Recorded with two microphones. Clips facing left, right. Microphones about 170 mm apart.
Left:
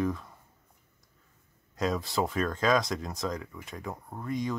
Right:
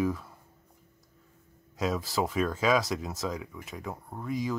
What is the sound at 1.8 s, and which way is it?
Speech, centre (ahead or behind).